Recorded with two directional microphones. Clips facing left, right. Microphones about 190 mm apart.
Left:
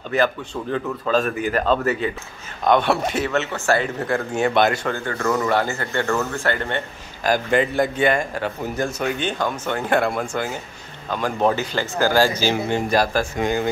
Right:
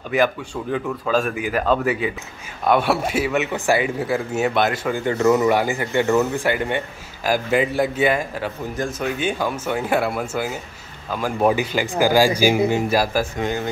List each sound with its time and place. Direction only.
0.1 s speech: 10° right (ahead or behind)
4.9 s a man's voice: 20° right (ahead or behind)